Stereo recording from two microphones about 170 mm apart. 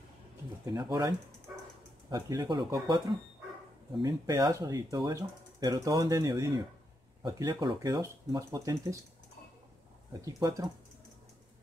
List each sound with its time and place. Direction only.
0.7 s speech: 25° right (ahead or behind)
10.2 s speech: 20° right (ahead or behind)